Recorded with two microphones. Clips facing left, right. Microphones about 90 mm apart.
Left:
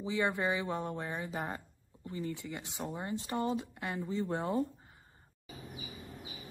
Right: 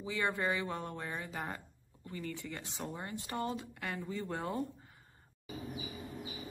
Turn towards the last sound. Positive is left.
turn(degrees=20)  # may be behind; listen again after turning